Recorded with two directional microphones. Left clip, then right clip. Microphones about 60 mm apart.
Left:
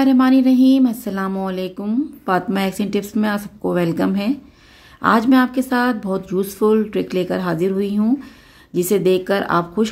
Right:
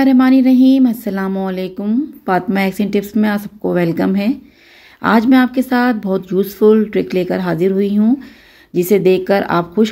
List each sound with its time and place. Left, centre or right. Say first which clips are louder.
0.0 s speech: right 3 dB; right